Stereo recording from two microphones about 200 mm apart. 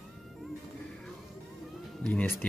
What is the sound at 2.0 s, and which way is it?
Speech, 10° left (ahead or behind).